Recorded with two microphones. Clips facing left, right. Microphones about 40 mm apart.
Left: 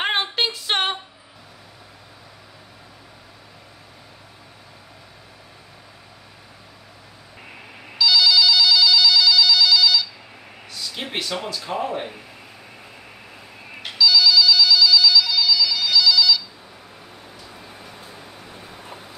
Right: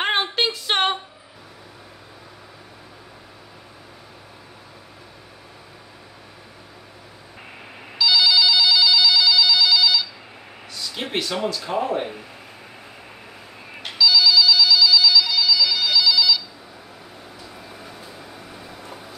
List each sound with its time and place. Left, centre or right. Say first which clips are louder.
0.0 s female singing: right 1 dB; centre
8.0 s telephone bell ringing: left 1 dB; centre
10.7 s speech: right 2 dB; centre
13.8 s telephone bell ringing: even; centre
18.0 s vehicle: right 1 dB; left